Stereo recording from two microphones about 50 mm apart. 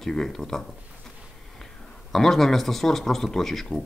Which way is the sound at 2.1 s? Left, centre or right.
Centre.